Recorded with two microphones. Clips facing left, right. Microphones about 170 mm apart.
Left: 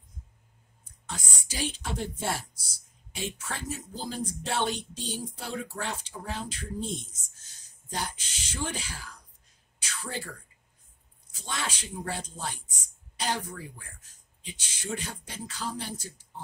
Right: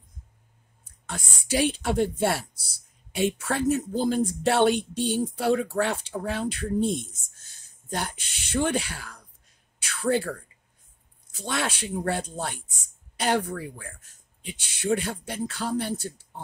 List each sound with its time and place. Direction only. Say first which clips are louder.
1.0 s speech: right 4 dB; 60° right (ahead or behind)
9.8 s a sound: right 13 dB; 60° right (ahead or behind)
11.3 s speech: right 7 dB; 65° right (ahead or behind)